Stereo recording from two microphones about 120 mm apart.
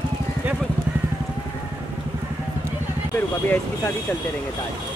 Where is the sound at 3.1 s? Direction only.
15° left (ahead or behind).